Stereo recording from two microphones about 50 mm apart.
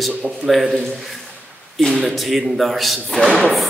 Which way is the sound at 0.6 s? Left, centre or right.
Centre.